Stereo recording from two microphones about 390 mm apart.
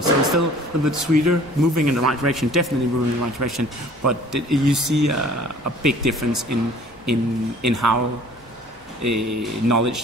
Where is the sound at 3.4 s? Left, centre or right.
Right.